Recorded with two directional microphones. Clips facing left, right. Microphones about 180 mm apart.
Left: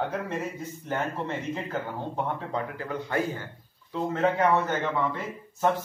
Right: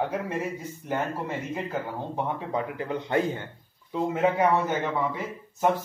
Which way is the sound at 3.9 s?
10° right (ahead or behind).